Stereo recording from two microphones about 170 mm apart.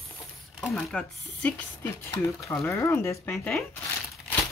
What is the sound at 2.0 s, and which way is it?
Speech, 20° left (ahead or behind).